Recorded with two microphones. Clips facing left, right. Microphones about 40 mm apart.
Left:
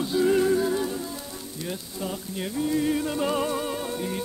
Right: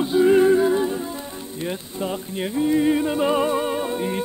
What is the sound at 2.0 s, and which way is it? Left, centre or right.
Music, right.